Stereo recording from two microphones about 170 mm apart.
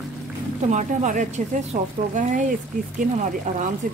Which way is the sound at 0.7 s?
45° right (ahead or behind).